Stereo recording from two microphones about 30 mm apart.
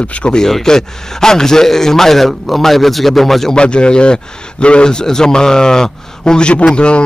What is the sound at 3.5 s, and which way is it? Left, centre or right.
A man's voice, left.